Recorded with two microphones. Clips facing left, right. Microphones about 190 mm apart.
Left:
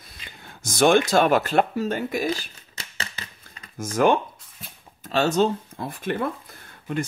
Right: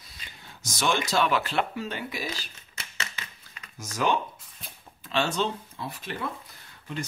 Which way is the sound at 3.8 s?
50° left (ahead or behind).